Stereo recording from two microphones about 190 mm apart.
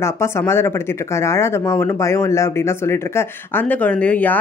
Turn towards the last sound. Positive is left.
turn(degrees=10)  # may be behind; listen again after turning